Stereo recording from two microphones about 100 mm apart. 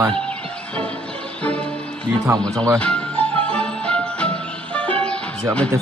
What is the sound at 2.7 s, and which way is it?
Music, 10° left (ahead or behind).